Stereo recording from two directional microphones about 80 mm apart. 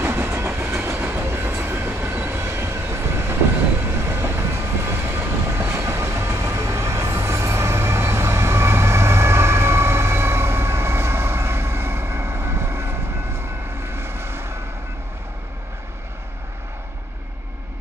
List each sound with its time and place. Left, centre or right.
0.0 s train: right